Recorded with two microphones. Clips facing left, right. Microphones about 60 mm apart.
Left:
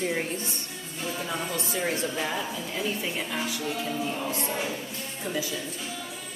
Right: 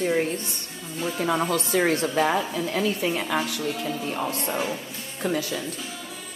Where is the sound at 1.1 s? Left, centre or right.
Right.